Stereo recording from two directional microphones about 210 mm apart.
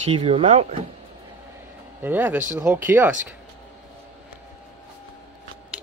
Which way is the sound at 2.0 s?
10° right (ahead or behind).